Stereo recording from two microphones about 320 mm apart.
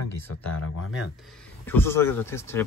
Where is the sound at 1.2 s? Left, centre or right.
Centre.